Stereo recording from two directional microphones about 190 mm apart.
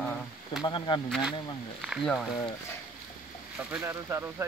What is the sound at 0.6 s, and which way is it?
Speech, 25° left (ahead or behind).